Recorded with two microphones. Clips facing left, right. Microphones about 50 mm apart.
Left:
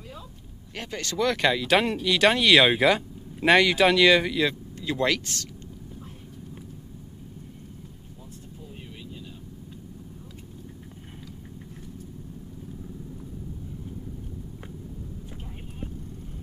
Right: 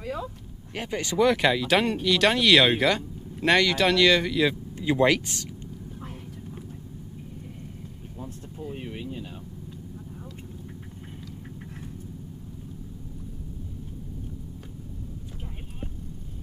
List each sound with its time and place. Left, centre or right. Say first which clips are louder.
0.0 s a sound: right 11 dB; right
0.7 s speech: right 4 dB; centre
4.7 s speech: right 6 dB; centre
8.6 s vehicle: right 9 dB; right